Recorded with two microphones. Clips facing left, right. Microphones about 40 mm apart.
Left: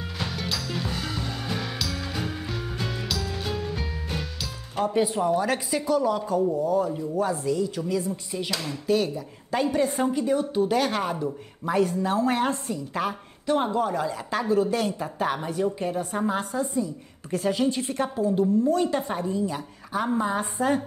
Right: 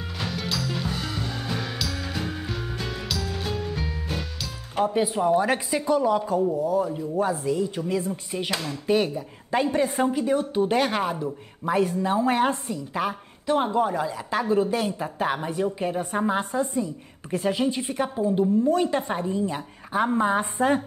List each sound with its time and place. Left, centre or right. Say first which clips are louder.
0.3 s music: right 4 dB; centre
4.7 s a woman's voice: right 1 dB; centre; by 20.4 s right